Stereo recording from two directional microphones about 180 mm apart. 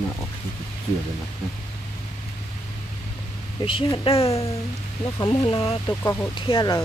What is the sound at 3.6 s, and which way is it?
Speech, 30° left (ahead or behind).